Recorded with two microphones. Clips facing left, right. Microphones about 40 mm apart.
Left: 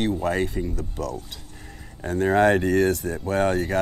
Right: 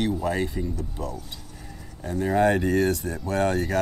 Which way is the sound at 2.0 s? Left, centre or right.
Left.